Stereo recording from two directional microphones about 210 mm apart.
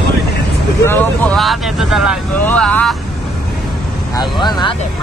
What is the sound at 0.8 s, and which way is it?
Vehicle, 10° left (ahead or behind).